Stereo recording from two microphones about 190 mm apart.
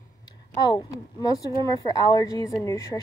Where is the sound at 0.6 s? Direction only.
20° left (ahead or behind).